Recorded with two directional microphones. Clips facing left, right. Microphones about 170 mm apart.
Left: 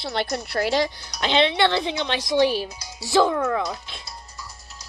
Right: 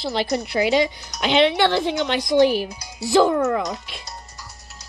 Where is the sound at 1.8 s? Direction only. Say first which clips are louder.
Right 4 dB; 45° right (ahead or behind).